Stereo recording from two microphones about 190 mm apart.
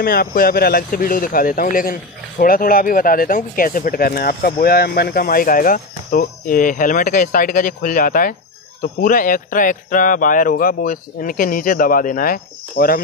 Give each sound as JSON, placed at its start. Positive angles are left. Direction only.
{"t": 0.0, "sound": "speech", "side_deg": 55}